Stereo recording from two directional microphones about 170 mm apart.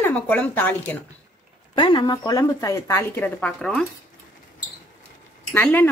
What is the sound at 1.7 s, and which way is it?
A woman's voice, 25° left (ahead or behind).